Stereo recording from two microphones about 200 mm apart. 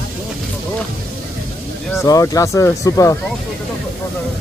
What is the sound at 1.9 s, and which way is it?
Speech, 15° left (ahead or behind).